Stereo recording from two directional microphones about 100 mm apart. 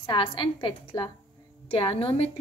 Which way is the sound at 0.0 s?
55° left (ahead or behind).